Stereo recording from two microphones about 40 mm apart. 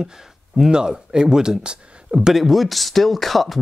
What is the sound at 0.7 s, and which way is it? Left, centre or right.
Speech, centre.